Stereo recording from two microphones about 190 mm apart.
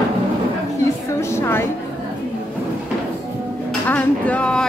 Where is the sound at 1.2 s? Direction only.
15° left (ahead or behind).